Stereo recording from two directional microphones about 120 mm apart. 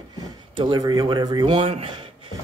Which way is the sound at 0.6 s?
35° right (ahead or behind).